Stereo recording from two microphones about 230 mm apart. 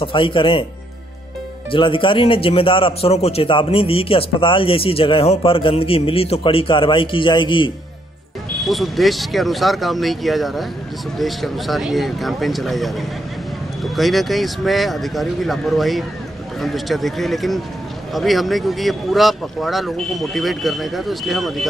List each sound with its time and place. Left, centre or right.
0.0 s speech: left
1.7 s speech: left
8.6 s speech: centre